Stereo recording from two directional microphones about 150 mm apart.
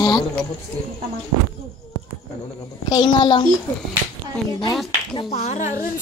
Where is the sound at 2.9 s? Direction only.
30° left (ahead or behind).